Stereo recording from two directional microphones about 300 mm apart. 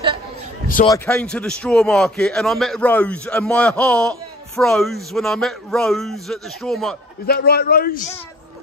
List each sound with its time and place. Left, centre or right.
0.8 s a man's voice: centre
7.2 s a man's voice: left